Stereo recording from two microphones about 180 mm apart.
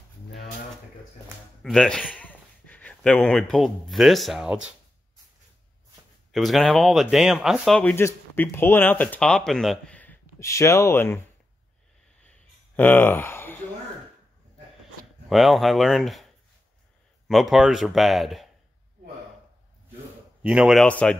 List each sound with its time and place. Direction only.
1.6 s speech: centre (ahead or behind)
6.3 s speech: centre (ahead or behind)
7.9 s speech: 15° left (ahead or behind)
12.2 s a sound: 10° left (ahead or behind)
15.2 s speech: centre (ahead or behind)
17.3 s speech: centre (ahead or behind)
20.4 s speech: 5° right (ahead or behind)